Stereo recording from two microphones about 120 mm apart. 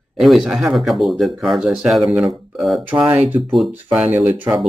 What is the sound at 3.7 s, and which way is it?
Speech, 15° right (ahead or behind).